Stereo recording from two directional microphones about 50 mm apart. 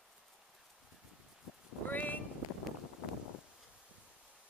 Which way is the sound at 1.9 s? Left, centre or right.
Left.